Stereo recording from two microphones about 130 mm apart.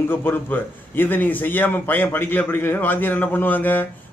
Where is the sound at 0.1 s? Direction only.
15° left (ahead or behind).